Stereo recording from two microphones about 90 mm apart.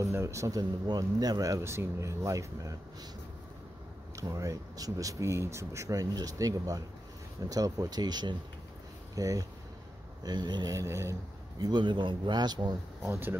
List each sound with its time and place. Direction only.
0.0 s speech: 35° right (ahead or behind)
1.6 s speech: 30° right (ahead or behind)
4.2 s speech: 40° right (ahead or behind)
7.4 s a sound: 40° right (ahead or behind)
9.1 s speech: 40° right (ahead or behind)
10.2 s a sound: 50° right (ahead or behind); by 11.1 s 35° right (ahead or behind)
11.6 s speech: 55° right (ahead or behind)
13.0 s speech: 25° right (ahead or behind)